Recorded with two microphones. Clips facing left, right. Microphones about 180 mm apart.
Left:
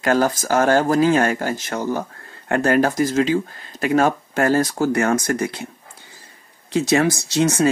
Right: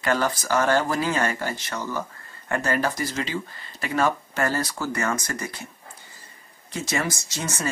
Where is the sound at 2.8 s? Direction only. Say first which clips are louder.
Left 9 dB; 50° left (ahead or behind).